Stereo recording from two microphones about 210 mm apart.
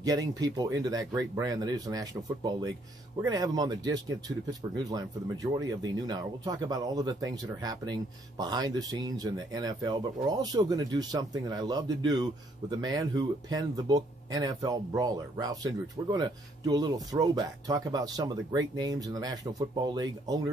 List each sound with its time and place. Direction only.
0.4 s speech: 20° right (ahead or behind)